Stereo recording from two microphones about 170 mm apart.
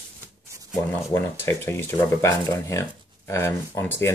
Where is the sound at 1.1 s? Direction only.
15° left (ahead or behind).